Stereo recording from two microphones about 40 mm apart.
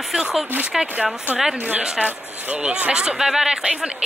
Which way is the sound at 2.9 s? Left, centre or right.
Right.